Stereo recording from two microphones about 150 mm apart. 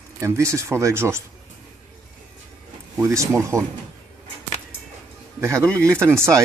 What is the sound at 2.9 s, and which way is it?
Speech, 20° right (ahead or behind).